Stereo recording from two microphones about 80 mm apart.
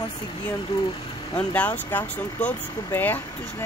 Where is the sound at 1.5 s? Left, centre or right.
Left.